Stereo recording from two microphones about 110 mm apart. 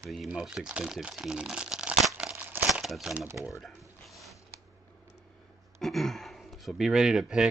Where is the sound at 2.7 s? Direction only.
Centre (ahead or behind).